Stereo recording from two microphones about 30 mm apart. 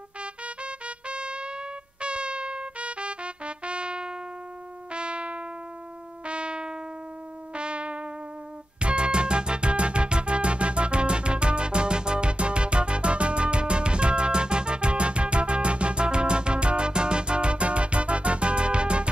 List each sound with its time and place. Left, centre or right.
0.2 s music: right